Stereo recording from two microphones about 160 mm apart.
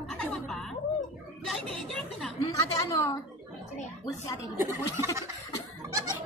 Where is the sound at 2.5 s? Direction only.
20° left (ahead or behind).